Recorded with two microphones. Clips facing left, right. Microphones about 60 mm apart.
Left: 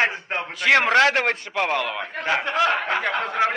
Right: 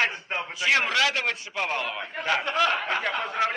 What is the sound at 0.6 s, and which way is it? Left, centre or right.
A man's voice, left.